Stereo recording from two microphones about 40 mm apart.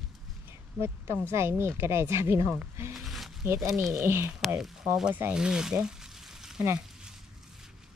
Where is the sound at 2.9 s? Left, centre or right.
Centre.